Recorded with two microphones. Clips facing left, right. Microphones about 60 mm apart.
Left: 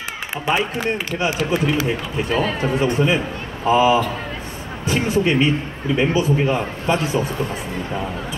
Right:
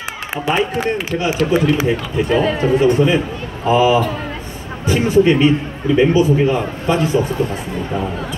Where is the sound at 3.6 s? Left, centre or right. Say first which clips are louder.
Right 2 dB; centre.